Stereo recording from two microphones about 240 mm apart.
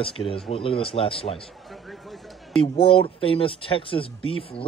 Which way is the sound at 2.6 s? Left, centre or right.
Left.